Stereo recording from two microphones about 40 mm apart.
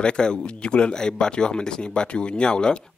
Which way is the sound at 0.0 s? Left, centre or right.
Left.